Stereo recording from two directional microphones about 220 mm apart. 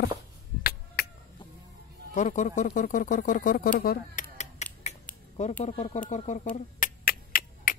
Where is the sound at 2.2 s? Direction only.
35° left (ahead or behind).